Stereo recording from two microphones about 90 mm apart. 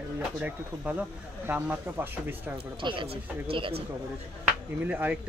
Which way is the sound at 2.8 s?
70° right (ahead or behind).